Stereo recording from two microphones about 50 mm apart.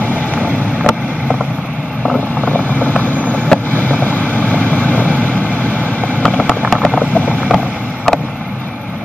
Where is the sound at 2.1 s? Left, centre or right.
Left.